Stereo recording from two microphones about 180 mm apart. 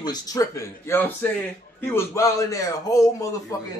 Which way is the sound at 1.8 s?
15° left (ahead or behind).